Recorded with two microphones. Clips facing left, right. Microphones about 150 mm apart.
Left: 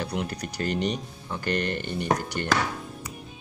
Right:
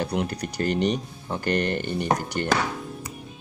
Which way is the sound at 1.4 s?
45° right (ahead or behind).